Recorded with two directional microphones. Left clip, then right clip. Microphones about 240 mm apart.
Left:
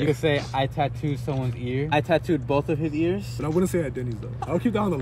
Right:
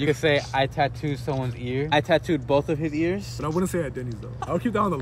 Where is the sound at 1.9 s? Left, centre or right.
Centre.